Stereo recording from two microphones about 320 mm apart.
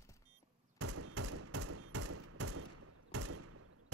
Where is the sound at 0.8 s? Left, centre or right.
Right.